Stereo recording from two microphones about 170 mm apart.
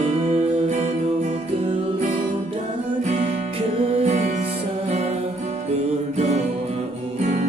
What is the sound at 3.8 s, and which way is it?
Music, 40° right (ahead or behind).